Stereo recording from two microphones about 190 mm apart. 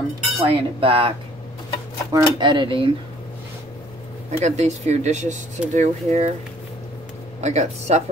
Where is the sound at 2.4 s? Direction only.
25° right (ahead or behind).